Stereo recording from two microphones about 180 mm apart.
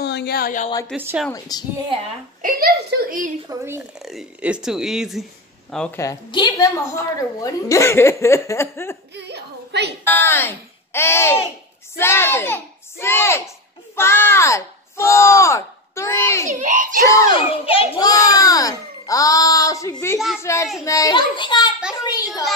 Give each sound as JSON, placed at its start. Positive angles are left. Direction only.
{"t": 0.0, "sound": "speech", "side_deg": 65}
{"t": 0.9, "sound": "a woman's voice", "side_deg": -10}
{"t": 1.5, "sound": "a child's voice", "side_deg": 20}
{"t": 2.4, "sound": "a woman's voice", "side_deg": -55}
{"t": 3.4, "sound": "a woman's voice", "side_deg": -15}
{"t": 4.0, "sound": "speech", "side_deg": 0}
{"t": 5.9, "sound": "a woman's voice", "side_deg": 20}
{"t": 9.1, "sound": "a woman's voice", "side_deg": -70}
{"t": 10.0, "sound": "a woman's voice", "side_deg": 10}
{"t": 16.4, "sound": "a woman's voice", "side_deg": -45}
{"t": 17.4, "sound": "a child's voice", "side_deg": 30}
{"t": 18.0, "sound": "a child's voice", "side_deg": 20}